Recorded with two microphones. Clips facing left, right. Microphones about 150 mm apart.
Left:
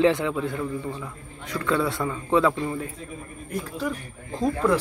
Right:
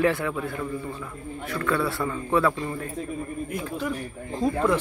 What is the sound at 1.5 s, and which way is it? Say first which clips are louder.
A man's voice: left 1 dB; 20° left (ahead or behind).